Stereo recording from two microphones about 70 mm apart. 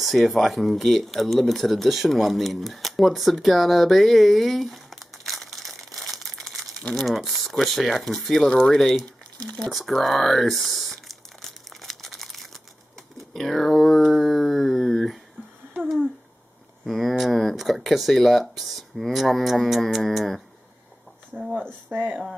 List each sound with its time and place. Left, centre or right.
0.0 s speech: centre
6.0 s crumpling: centre
6.8 s speech: centre
7.1 s speech: centre
11.7 s crumpling: centre
13.2 s speech: centre
16.8 s speech: centre
21.3 s speech: right